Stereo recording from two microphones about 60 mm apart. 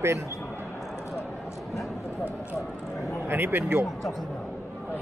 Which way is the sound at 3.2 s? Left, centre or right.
Right.